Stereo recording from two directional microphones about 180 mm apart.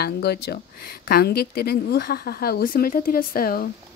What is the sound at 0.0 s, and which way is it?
A woman's voice, 65° left (ahead or behind).